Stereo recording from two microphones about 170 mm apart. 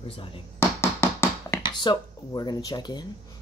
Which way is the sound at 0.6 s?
15° left (ahead or behind).